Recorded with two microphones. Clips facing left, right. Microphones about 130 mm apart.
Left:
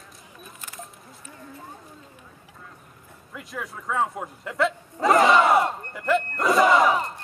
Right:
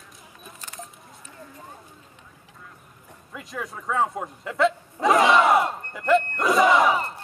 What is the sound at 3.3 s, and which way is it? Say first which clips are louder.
Speech: right 1 dB; centre (ahead or behind).